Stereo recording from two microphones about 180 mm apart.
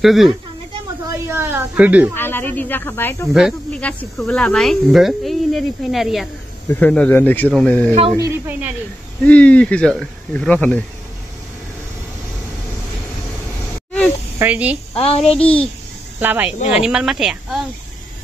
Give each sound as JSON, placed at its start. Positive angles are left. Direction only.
{"t": 0.0, "sound": "speech", "side_deg": 0}
{"t": 1.3, "sound": "speech", "side_deg": -15}
{"t": 2.1, "sound": "speech", "side_deg": 10}
{"t": 3.3, "sound": "speech", "side_deg": 0}
{"t": 8.2, "sound": "speech", "side_deg": -10}
{"t": 9.2, "sound": "speech", "side_deg": 5}
{"t": 14.4, "sound": "speech", "side_deg": -10}
{"t": 15.0, "sound": "a child's voice", "side_deg": 35}
{"t": 16.2, "sound": "speech", "side_deg": -10}